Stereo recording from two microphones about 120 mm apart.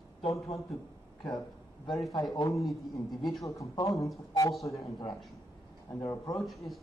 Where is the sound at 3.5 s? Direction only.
25° left (ahead or behind).